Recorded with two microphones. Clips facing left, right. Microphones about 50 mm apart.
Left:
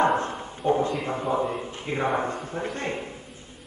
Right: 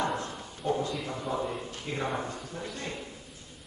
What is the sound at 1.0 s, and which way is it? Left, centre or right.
Speech, left.